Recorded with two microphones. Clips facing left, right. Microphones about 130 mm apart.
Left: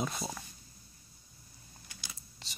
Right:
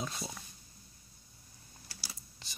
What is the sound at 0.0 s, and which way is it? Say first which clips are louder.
Speech: left 4 dB; 50° left (ahead or behind).